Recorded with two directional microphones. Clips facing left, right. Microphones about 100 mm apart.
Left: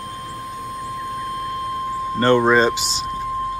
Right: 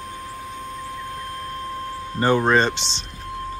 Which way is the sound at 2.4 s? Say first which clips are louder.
Left 3 dB; centre (ahead or behind).